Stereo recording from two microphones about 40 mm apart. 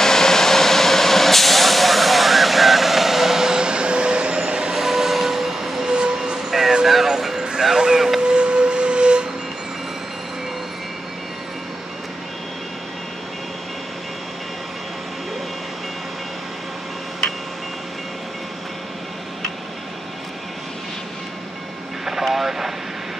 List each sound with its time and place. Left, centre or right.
0.0 s vehicle: centre; by 4.7 s right
4.7 s train: centre
5.9 s train: right
6.5 s vehicle: centre
6.9 s music: centre
7.6 s vehicle: centre
8.2 s a sound: right
22.0 s vehicle: centre